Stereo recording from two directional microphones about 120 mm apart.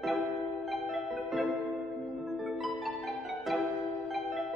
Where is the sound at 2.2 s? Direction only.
Centre (ahead or behind).